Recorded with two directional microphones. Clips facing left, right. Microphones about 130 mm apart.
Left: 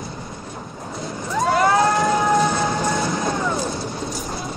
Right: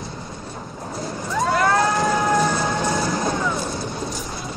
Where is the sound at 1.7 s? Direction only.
Centre (ahead or behind).